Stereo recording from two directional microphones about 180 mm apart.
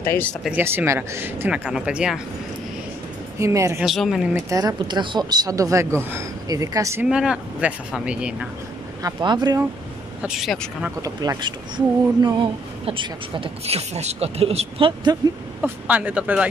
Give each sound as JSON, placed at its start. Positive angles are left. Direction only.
{"t": 0.0, "sound": "speech", "side_deg": 10}
{"t": 0.5, "sound": "speech", "side_deg": -10}
{"t": 3.3, "sound": "speech", "side_deg": -15}
{"t": 3.8, "sound": "speech", "side_deg": 0}
{"t": 4.5, "sound": "speech", "side_deg": -20}
{"t": 7.1, "sound": "speech", "side_deg": -5}
{"t": 9.0, "sound": "speech", "side_deg": -25}
{"t": 10.2, "sound": "speech", "side_deg": 0}
{"t": 11.0, "sound": "speech", "side_deg": -20}
{"t": 15.6, "sound": "speech", "side_deg": -10}